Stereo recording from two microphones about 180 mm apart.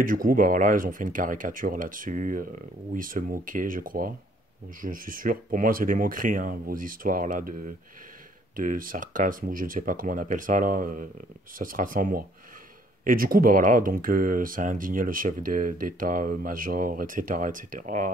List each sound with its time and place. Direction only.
0.0 s speech: 50° right (ahead or behind)
8.5 s speech: 50° right (ahead or behind)